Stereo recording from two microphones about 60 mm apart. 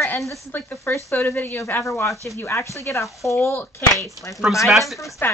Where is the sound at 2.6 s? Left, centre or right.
Left.